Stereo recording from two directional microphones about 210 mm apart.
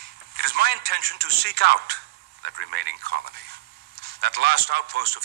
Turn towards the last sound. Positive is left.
turn(degrees=-50)  # may be behind; listen again after turning